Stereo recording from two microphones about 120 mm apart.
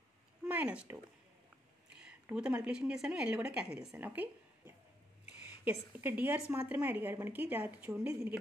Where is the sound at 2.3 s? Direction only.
5° right (ahead or behind).